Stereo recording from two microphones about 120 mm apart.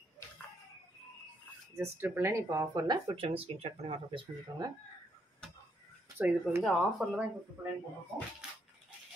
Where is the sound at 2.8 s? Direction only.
40° right (ahead or behind); by 4.2 s 55° right (ahead or behind).